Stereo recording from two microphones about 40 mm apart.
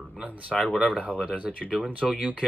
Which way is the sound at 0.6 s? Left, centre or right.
Centre.